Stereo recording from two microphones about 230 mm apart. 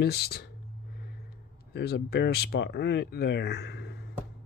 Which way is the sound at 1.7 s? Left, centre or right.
Left.